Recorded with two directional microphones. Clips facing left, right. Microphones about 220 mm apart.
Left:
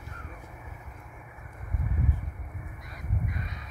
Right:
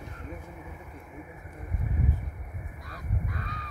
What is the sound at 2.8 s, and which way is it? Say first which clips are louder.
Honk: left 1 dB; 20° left (ahead or behind).